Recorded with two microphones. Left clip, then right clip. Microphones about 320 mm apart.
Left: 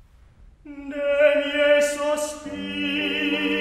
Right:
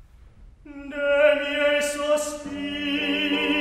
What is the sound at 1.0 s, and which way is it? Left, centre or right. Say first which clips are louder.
Chant: even; left.